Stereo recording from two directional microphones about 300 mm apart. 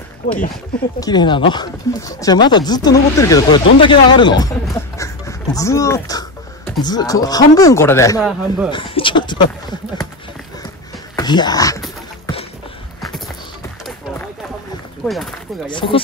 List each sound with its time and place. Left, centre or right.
0.2 s speech: left
0.9 s speech: centre
8.2 s speech: centre
8.6 s speech: centre
11.1 s speech: centre
15.7 s speech: centre